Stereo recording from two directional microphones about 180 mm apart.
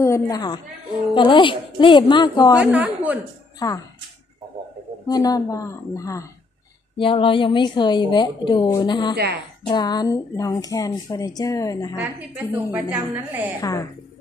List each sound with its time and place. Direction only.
0.0 s a woman's voice: 20° left (ahead or behind)
2.5 s a woman's voice: 10° right (ahead or behind)
3.5 s speech: 20° left (ahead or behind)
5.0 s a woman's voice: 20° left (ahead or behind)
7.0 s speech: 30° left (ahead or behind)
9.1 s a woman's voice: 65° right (ahead or behind)
9.7 s speech: 25° left (ahead or behind)
12.9 s a woman's voice: 10° right (ahead or behind)
13.6 s a woman's voice: 20° left (ahead or behind)